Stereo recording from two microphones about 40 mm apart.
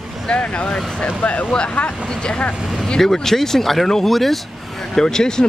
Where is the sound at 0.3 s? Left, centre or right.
Left.